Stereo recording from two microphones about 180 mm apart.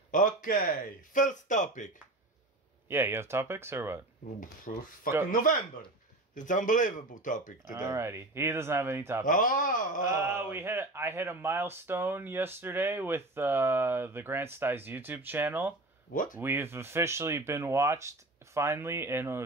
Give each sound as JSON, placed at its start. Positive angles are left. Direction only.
{"t": 0.1, "sound": "speech", "side_deg": 50}
{"t": 2.9, "sound": "speech", "side_deg": -15}
{"t": 4.4, "sound": "speech", "side_deg": 50}
{"t": 7.9, "sound": "speech", "side_deg": -15}
{"t": 9.2, "sound": "speech", "side_deg": 50}
{"t": 10.2, "sound": "speech", "side_deg": -15}
{"t": 16.1, "sound": "speech", "side_deg": 50}
{"t": 16.3, "sound": "speech", "side_deg": -10}